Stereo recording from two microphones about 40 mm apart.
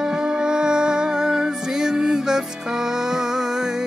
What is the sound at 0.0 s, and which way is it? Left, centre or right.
Music, centre.